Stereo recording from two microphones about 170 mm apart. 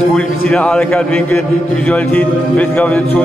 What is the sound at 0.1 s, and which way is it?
A man's voice, 5° left (ahead or behind).